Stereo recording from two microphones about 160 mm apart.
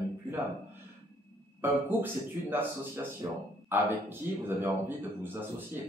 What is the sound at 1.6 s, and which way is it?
Speech, 10° right (ahead or behind).